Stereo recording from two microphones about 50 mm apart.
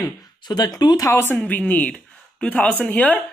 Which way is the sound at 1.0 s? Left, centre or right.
Left.